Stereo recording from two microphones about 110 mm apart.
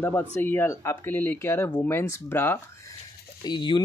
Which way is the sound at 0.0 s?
20° left (ahead or behind).